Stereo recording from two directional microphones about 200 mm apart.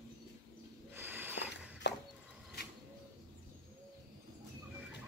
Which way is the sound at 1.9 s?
60° left (ahead or behind).